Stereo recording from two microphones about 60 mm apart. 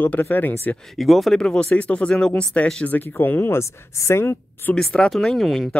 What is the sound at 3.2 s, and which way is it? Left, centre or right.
A woman's voice, left.